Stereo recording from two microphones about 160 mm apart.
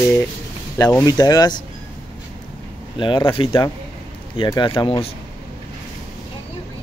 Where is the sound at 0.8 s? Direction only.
25° left (ahead or behind).